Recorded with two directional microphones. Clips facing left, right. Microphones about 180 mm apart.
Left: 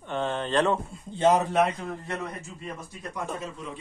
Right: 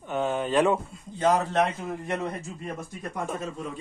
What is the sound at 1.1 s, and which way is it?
Speech, 25° left (ahead or behind).